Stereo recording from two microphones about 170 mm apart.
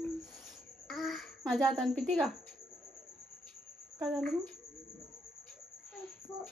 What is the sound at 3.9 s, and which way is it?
Speech, 5° left (ahead or behind).